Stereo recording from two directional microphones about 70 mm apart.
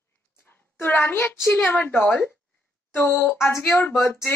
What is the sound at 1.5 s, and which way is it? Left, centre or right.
A woman's voice, left.